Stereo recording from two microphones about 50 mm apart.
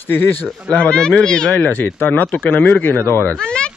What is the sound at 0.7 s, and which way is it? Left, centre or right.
Speech, left.